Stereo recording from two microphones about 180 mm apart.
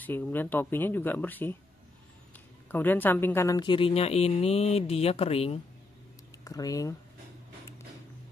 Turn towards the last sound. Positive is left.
turn(degrees=20)  # may be behind; listen again after turning